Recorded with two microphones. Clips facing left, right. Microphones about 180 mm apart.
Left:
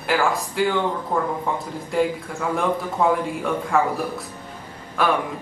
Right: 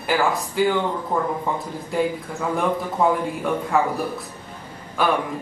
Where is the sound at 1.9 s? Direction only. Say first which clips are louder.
Left 1 dB; 5° right (ahead or behind).